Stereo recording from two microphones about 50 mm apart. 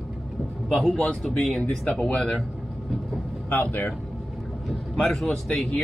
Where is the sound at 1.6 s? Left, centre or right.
Left.